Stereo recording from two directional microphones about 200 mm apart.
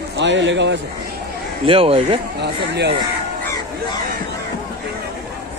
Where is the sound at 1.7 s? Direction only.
30° right (ahead or behind).